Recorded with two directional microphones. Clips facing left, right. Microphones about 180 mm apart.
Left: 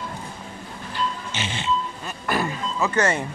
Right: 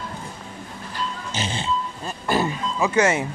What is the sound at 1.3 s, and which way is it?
Speech, 35° right (ahead or behind).